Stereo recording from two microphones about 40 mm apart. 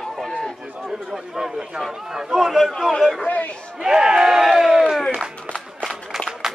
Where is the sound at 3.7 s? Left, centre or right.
Centre.